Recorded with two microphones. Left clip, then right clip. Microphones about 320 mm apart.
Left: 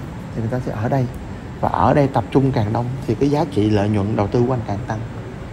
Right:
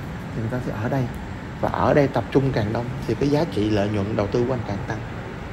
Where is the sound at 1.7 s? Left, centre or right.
Left.